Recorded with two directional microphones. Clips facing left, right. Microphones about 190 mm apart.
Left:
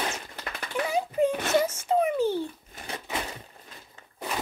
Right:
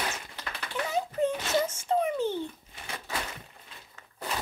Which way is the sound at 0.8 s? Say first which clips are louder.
Left 3 dB; 15° left (ahead or behind).